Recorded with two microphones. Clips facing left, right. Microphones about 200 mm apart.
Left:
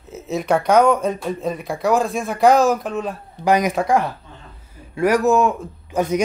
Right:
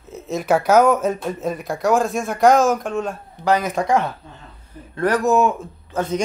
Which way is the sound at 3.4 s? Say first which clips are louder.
Left 2 dB; 15° left (ahead or behind).